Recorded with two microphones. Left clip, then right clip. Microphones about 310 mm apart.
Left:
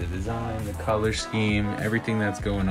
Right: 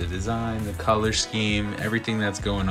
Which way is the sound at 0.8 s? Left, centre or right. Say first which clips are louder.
Right 3 dB; centre.